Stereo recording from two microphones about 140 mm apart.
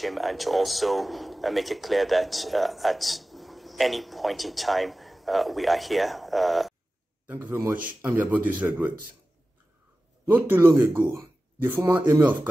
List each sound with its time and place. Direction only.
0.0 s speech: centre (ahead or behind)
7.2 s speech: 15° right (ahead or behind)
10.2 s speech: 15° right (ahead or behind)
12.1 s speech: 30° right (ahead or behind)